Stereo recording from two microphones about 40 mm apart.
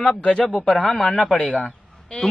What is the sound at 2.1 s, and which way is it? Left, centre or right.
Speech, left.